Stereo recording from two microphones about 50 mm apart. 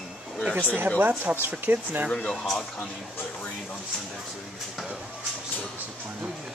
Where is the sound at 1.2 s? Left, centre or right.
Right.